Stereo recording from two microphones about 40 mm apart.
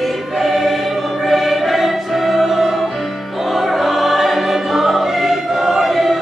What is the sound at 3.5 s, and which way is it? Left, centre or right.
Choir, centre.